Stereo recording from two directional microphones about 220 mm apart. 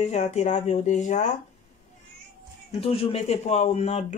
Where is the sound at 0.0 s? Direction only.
30° left (ahead or behind).